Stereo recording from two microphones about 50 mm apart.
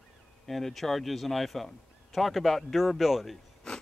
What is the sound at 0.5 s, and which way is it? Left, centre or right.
A man's voice, centre.